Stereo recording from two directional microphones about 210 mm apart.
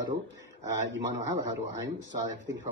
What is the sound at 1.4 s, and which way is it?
Speech, 15° right (ahead or behind).